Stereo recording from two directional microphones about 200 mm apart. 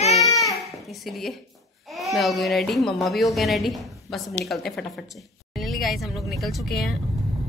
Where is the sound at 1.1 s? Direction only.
Centre (ahead or behind).